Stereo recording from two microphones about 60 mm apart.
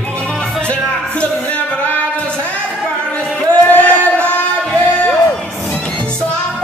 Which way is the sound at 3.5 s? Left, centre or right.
Left.